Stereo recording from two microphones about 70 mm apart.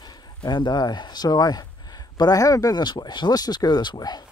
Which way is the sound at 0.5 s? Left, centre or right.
Left.